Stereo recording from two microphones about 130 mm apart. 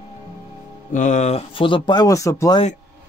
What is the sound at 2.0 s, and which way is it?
Speech, 25° left (ahead or behind).